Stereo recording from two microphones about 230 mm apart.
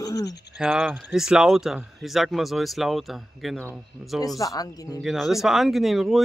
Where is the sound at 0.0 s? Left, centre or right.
Centre.